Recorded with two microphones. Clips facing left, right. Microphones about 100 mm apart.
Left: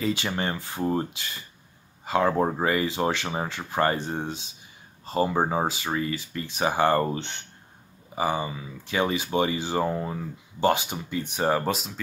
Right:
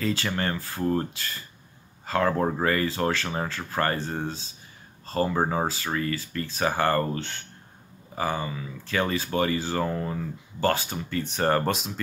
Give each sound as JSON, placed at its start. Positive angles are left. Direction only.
{"t": 0.0, "sound": "speech", "side_deg": 20}